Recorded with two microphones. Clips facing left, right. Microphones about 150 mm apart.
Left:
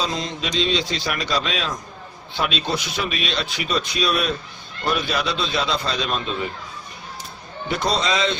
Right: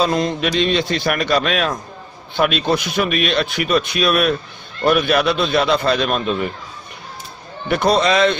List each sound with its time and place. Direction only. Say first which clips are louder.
0.0 s speech: right 8 dB; 60° right (ahead or behind)
7.6 s speech: right 7 dB; 60° right (ahead or behind)